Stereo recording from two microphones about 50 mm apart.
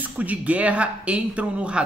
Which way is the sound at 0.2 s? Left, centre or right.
Right.